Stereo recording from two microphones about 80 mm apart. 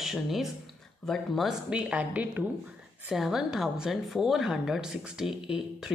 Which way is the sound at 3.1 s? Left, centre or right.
Centre.